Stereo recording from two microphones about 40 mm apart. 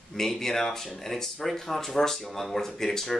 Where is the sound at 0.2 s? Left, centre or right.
Centre.